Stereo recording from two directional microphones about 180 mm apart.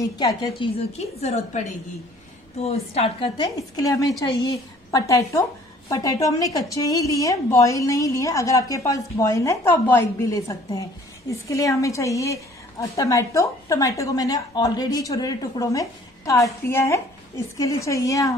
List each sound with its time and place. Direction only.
0.0 s a woman's voice: 20° left (ahead or behind)
1.2 s a woman's voice: 40° left (ahead or behind); by 18.3 s 20° left (ahead or behind)